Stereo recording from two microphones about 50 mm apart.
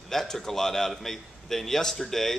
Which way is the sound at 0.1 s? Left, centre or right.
Centre.